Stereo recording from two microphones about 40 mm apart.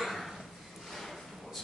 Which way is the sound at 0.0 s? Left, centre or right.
Centre.